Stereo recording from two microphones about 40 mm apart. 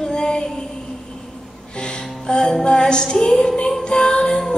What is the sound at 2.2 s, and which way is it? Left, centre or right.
Music, centre.